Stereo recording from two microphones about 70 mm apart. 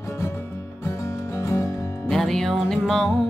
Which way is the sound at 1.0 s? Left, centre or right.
Left.